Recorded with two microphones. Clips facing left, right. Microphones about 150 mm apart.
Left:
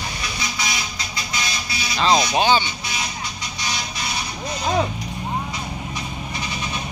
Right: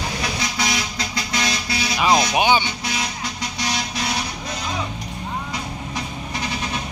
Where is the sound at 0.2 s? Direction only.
90° right.